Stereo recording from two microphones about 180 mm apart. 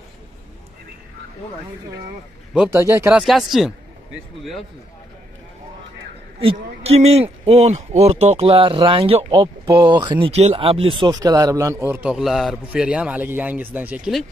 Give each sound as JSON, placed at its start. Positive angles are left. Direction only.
{"t": 2.5, "sound": "speech", "side_deg": -5}
{"t": 3.1, "sound": "speech", "side_deg": -5}
{"t": 6.4, "sound": "speech", "side_deg": -35}